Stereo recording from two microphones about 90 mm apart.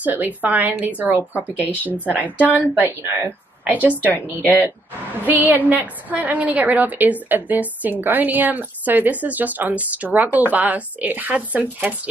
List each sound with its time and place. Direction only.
0.0 s a woman's voice: 20° right (ahead or behind)
4.1 s speech: 20° left (ahead or behind)
5.2 s speech: 20° right (ahead or behind)